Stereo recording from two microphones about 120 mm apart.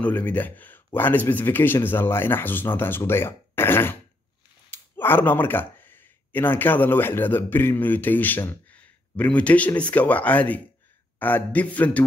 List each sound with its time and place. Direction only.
0.0 s speech: 15° left (ahead or behind)